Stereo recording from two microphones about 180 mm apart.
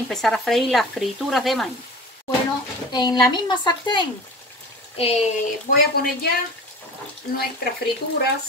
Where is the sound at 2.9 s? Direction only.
25° left (ahead or behind).